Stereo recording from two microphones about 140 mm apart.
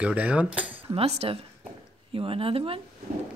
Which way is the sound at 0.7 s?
45° right (ahead or behind).